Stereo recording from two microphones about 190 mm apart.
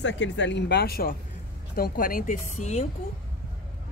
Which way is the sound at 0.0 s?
70° left (ahead or behind).